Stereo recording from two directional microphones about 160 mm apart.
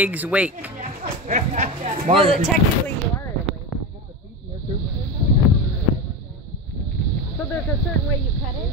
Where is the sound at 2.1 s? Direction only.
35° right (ahead or behind).